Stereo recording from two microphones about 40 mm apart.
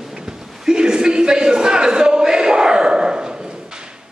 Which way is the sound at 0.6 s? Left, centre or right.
Centre.